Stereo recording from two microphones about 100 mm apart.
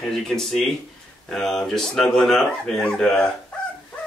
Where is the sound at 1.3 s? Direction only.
5° left (ahead or behind).